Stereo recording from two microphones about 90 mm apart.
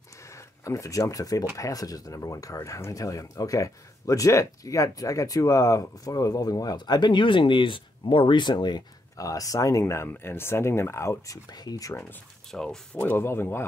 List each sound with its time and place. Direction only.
0.2 s a sound: 35° left (ahead or behind)
1.6 s speech: 40° left (ahead or behind)
9.1 s speech: 40° left (ahead or behind)
10.0 s speech: 25° left (ahead or behind)
11.5 s speech: 45° left (ahead or behind)
12.4 s speech: 5° left (ahead or behind)
13.0 s speech: 25° left (ahead or behind)